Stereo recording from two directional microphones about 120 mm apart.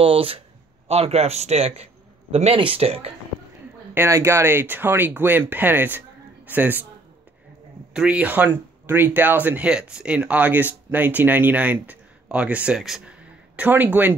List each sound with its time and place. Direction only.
0.0 s a man's voice: 50° right (ahead or behind)
3.9 s speech: 20° right (ahead or behind)
7.9 s speech: 10° right (ahead or behind)